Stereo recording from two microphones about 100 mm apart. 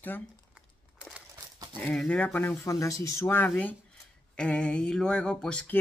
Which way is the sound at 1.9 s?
10° left (ahead or behind).